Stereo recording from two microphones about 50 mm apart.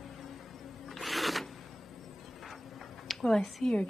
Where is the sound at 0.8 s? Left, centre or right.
Centre.